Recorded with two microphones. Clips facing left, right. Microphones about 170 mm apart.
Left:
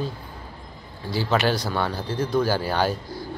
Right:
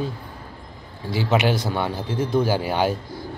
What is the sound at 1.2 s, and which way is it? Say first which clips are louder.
A man's voice: right 2 dB; 15° right (ahead or behind).